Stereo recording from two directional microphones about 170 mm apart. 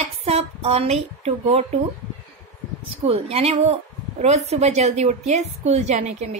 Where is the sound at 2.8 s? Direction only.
35° right (ahead or behind).